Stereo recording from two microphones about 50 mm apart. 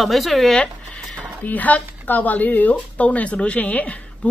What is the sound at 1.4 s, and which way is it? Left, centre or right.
Speech, left.